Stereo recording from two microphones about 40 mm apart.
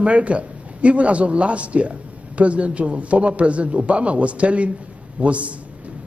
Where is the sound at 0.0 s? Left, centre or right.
Right.